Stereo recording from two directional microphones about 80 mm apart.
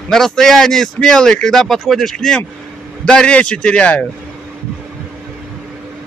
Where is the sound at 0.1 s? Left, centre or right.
Centre.